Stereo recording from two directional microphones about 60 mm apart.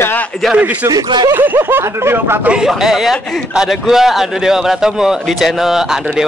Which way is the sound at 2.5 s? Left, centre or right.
Centre.